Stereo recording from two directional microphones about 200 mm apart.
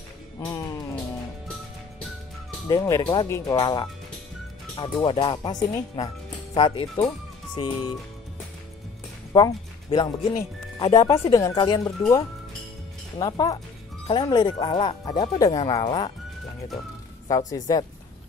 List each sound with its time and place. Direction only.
0.5 s music: 15° left (ahead or behind)
2.7 s speech: 20° left (ahead or behind)
9.3 s speech: 20° left (ahead or behind)
13.2 s speech: 15° left (ahead or behind)
17.3 s speech: 15° left (ahead or behind)